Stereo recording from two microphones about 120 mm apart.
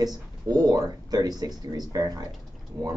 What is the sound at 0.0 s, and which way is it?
Speech, 35° right (ahead or behind).